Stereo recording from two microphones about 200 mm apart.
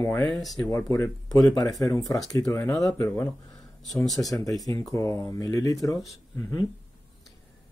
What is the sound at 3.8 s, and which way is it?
Speech, centre (ahead or behind).